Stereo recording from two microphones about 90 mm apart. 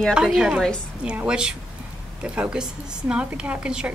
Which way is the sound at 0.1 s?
5° right (ahead or behind).